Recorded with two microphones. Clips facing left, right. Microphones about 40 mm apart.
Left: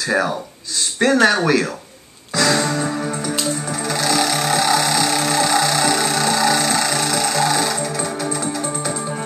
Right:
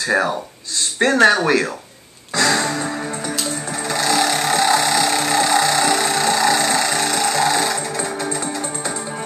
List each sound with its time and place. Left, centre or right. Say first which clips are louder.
0.0 s speech: right 1 dB; centre
2.3 s music: even; centre